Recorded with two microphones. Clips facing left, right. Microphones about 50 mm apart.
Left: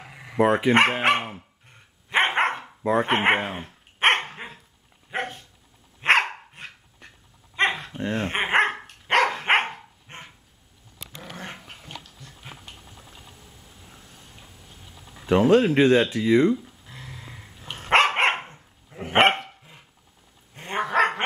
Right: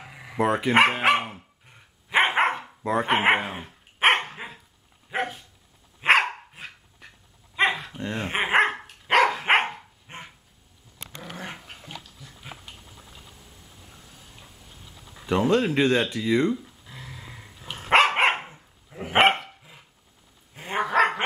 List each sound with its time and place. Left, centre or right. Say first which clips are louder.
0.0 s dog: even; centre
0.4 s speech: left 4 dB; centre
0.7 s dog: even; centre
11.3 s dog: even; centre
13.9 s a sound: left 1 dB; centre
15.2 s speech: left 4 dB; centre
16.1 s dog: left 4 dB; centre